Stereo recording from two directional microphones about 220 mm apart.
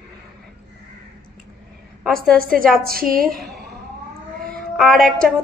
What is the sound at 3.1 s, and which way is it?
Speech, 40° right (ahead or behind).